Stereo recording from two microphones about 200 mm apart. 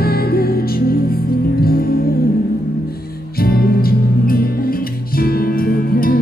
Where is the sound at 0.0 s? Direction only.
50° left (ahead or behind).